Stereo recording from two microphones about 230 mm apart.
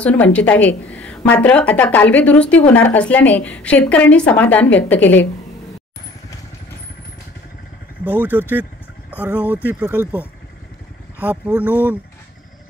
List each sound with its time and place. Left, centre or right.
0.0 s a woman's voice: centre
8.2 s speech: centre
11.2 s speech: centre